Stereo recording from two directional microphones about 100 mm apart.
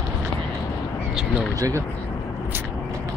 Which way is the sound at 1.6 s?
35° right (ahead or behind).